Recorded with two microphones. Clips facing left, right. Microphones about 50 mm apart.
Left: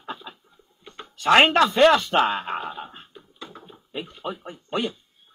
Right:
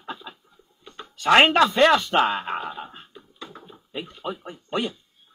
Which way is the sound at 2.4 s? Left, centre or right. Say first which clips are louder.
Even; right.